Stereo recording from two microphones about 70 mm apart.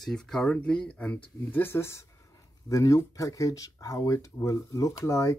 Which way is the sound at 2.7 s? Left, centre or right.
Left.